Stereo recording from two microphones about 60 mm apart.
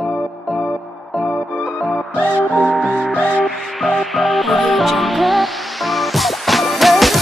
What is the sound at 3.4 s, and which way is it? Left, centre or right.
Music, centre.